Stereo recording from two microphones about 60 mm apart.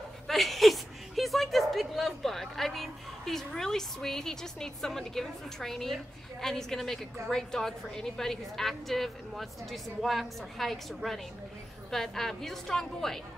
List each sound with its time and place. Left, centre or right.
0.3 s a woman's voice: centre